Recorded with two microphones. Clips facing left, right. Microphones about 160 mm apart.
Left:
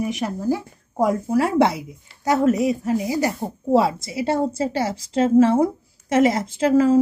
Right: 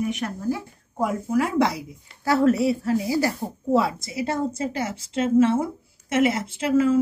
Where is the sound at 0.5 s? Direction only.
40° left (ahead or behind).